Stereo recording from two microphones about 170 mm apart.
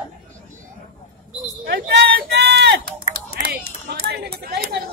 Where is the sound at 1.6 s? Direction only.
65° right (ahead or behind).